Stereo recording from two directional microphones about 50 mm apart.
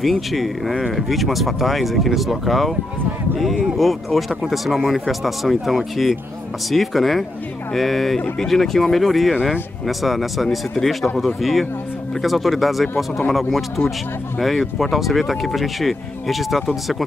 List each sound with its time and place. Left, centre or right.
0.0 s speech: centre
3.7 s speech: centre
9.3 s speech: centre
9.8 s speech: centre